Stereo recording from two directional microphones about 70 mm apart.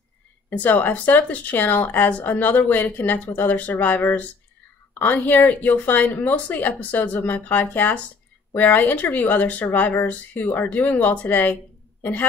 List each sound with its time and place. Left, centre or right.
0.5 s speech: left